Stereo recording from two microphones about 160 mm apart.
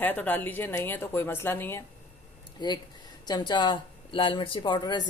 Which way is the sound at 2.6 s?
25° left (ahead or behind).